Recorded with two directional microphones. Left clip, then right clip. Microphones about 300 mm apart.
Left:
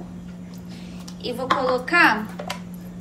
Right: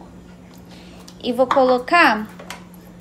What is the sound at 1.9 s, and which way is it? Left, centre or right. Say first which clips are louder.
Speech: left 1 dB; right.